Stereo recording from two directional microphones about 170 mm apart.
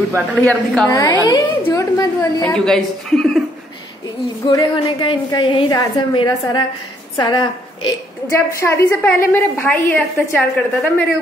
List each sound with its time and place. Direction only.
0.1 s a woman's voice: 5° left (ahead or behind)
0.9 s a woman's voice: 25° left (ahead or behind)
2.4 s a woman's voice: 5° left (ahead or behind)
4.5 s a woman's voice: 25° left (ahead or behind); by 11.1 s 5° left (ahead or behind)